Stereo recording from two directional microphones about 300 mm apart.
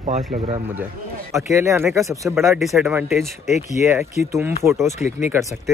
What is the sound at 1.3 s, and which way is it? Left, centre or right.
Speech, centre.